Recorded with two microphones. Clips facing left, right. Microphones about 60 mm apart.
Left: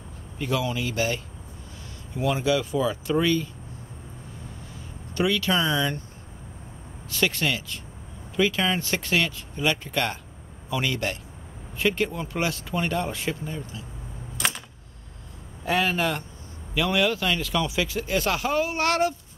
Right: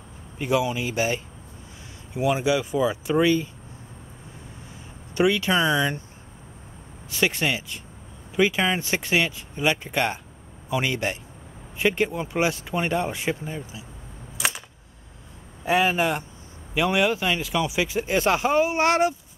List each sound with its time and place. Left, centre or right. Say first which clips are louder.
0.4 s speech: right 3 dB; centre
5.1 s speech: right 3 dB; centre
7.1 s speech: right 1 dB; centre
14.3 s typewriter: right 1 dB; centre
15.6 s speech: right 3 dB; centre